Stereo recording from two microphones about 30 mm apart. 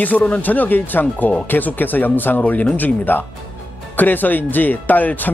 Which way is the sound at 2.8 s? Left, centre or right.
Left.